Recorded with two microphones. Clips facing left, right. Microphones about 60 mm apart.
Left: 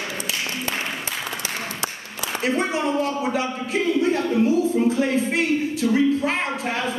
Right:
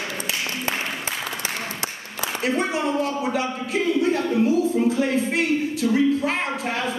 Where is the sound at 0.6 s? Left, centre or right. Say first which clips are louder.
Right 1 dB; right.